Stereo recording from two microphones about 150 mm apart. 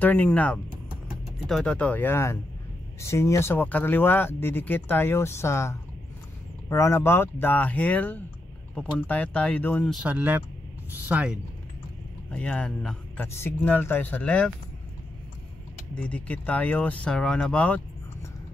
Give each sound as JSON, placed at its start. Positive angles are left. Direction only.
{"t": 0.0, "sound": "speech", "side_deg": 10}
{"t": 9.9, "sound": "speech", "side_deg": -10}
{"t": 12.3, "sound": "speech", "side_deg": 10}
{"t": 15.9, "sound": "speech", "side_deg": 10}